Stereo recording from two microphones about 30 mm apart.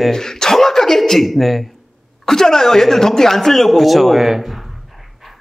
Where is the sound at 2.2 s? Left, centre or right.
Centre.